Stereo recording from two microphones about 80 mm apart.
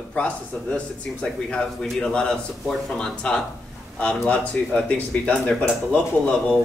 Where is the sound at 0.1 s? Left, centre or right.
Centre.